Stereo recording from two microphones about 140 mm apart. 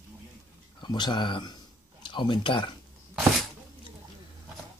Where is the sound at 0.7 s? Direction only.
30° left (ahead or behind).